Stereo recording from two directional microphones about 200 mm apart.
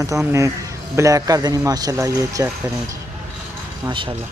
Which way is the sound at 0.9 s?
15° right (ahead or behind).